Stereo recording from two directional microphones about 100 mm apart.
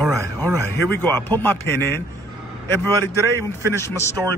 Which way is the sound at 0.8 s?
25° left (ahead or behind).